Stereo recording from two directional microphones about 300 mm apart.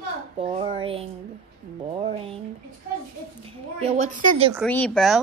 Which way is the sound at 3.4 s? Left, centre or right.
Right.